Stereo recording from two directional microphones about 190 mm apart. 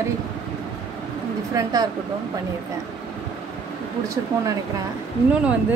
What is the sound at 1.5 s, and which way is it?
Speech, 20° right (ahead or behind).